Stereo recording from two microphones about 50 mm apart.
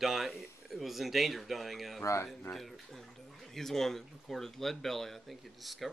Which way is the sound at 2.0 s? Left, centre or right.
Left.